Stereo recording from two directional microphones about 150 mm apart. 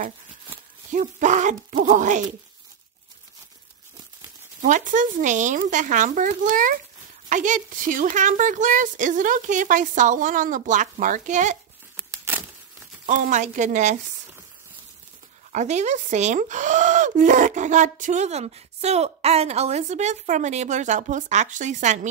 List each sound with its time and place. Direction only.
0.9 s a woman's voice: 55° right (ahead or behind)
4.6 s a woman's voice: 60° right (ahead or behind)
12.0 s a sound: 15° right (ahead or behind)
13.0 s a woman's voice: 55° right (ahead or behind)
15.5 s speech: 50° right (ahead or behind)